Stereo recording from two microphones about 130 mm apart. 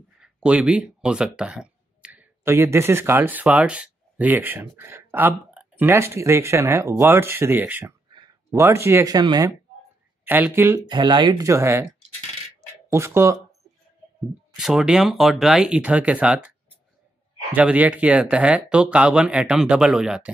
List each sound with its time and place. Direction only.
0.2 s a sound: 5° right (ahead or behind)
2.4 s speech: 20° right (ahead or behind)
9.1 s speech: 30° right (ahead or behind)
10.2 s speech: 15° right (ahead or behind)
10.9 s speech: 35° right (ahead or behind)
11.4 s speech: 20° right (ahead or behind)
12.9 s speech: 20° right (ahead or behind)
14.6 s speech: 5° right (ahead or behind)